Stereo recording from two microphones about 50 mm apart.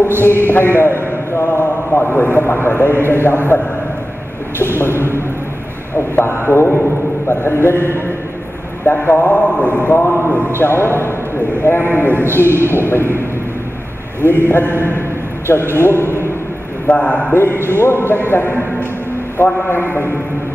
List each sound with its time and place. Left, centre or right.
0.2 s a man's voice: left
4.7 s a man's voice: left
6.1 s a man's voice: left
8.8 s speech: left
10.6 s a man's voice: left
14.5 s a man's voice: left
16.8 s speech: left
17.3 s a man's voice: left